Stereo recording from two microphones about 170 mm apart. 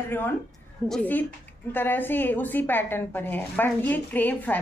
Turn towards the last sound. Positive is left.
turn(degrees=10)  # may be behind; listen again after turning